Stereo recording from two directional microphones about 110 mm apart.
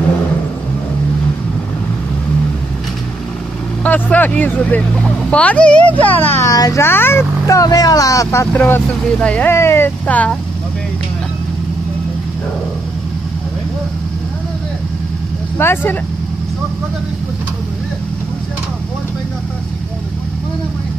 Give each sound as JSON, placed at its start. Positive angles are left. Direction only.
{"t": 3.8, "sound": "speech", "side_deg": 15}
{"t": 6.4, "sound": "speech", "side_deg": 30}
{"t": 15.5, "sound": "speech", "side_deg": 20}